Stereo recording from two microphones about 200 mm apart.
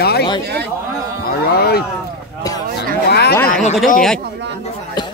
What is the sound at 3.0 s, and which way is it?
Speech, 55° left (ahead or behind).